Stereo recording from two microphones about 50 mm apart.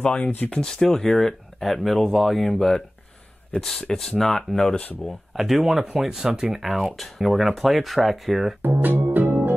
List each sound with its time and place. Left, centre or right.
0.0 s speech: left
0.5 s speech: centre
5.0 s speech: centre
6.6 s speech: centre
8.6 s music: right